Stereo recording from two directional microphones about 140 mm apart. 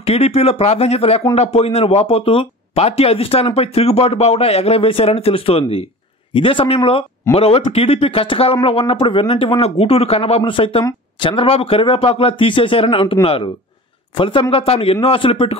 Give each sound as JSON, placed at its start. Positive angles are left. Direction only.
{"t": 0.0, "sound": "speech", "side_deg": 45}